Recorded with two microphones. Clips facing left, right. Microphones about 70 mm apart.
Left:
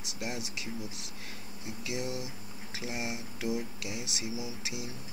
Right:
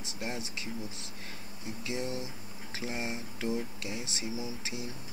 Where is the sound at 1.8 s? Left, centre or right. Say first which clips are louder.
Even; centre.